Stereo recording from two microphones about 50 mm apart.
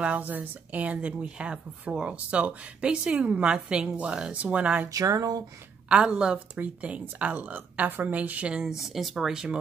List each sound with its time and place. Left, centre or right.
0.0 s speech: right
5.9 s speech: centre
8.6 s speech: centre
9.3 s speech: centre